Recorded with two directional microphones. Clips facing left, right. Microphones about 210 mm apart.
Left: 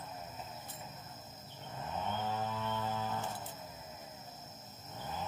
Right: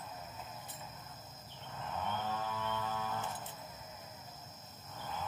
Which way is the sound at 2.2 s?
25° left (ahead or behind).